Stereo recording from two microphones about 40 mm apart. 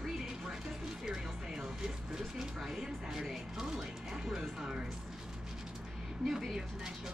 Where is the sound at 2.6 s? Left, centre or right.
Centre.